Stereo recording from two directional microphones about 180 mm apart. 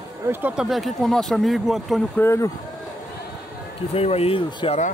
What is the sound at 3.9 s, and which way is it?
Speech, 35° left (ahead or behind).